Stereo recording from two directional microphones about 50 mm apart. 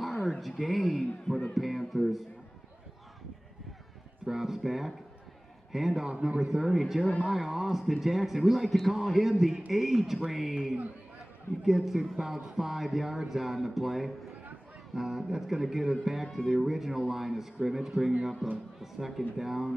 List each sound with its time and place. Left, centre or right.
0.0 s a man's voice: centre
4.3 s a man's voice: centre
6.1 s speech: centre
6.4 s a man's voice: centre
16.3 s speech: centre
16.6 s a man's voice: centre